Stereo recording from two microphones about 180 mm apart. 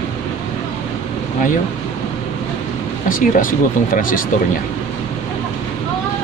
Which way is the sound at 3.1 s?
50° left (ahead or behind).